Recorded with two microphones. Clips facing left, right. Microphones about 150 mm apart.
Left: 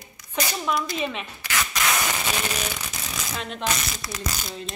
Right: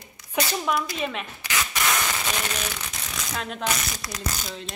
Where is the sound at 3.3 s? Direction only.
Centre (ahead or behind).